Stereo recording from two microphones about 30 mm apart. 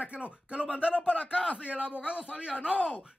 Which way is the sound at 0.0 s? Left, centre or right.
Right.